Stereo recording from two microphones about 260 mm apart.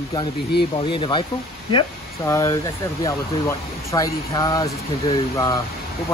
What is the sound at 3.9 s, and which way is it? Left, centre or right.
Speech, centre.